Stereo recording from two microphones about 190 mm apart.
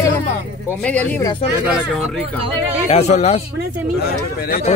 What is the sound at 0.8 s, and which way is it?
Speech, 5° left (ahead or behind).